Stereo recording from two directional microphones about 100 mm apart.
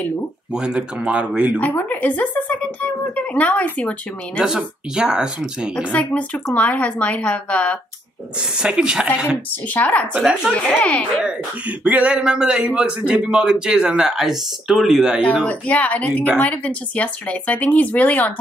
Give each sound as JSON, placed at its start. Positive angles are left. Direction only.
{"t": 0.5, "sound": "speech", "side_deg": -10}
{"t": 1.6, "sound": "a woman's voice", "side_deg": 15}
{"t": 4.4, "sound": "speech", "side_deg": -5}
{"t": 5.9, "sound": "a woman's voice", "side_deg": 15}
{"t": 8.4, "sound": "speech", "side_deg": -10}
{"t": 9.8, "sound": "speech", "side_deg": 20}
{"t": 10.1, "sound": "a woman's voice", "side_deg": -5}
{"t": 10.5, "sound": "a woman's voice", "side_deg": 15}
{"t": 11.2, "sound": "speech", "side_deg": -15}
{"t": 15.2, "sound": "a woman's voice", "side_deg": 15}